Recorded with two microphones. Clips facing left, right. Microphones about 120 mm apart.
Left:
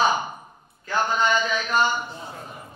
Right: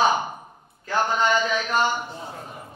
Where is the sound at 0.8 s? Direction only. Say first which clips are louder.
Right 1 dB; 55° right (ahead or behind).